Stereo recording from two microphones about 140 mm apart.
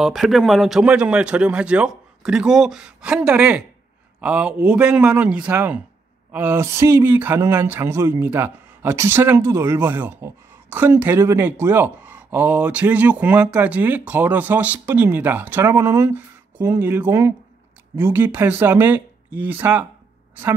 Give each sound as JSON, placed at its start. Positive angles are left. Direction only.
{"t": 0.0, "sound": "speech", "side_deg": 0}